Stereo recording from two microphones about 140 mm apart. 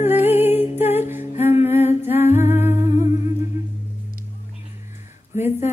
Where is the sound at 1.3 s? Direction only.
50° left (ahead or behind).